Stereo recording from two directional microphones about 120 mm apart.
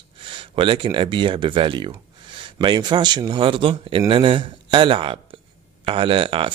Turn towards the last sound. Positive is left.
turn(degrees=-45)  # may be behind; listen again after turning